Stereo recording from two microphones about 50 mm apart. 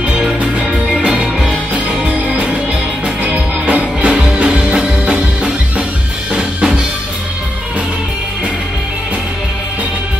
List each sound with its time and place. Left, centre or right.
0.2 s music: centre
3.6 s music: right
6.3 s drum: centre